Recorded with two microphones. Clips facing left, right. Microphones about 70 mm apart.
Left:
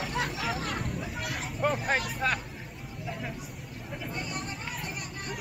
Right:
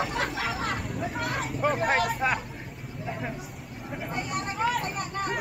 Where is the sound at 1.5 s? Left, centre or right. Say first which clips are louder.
Right 2 dB; centre.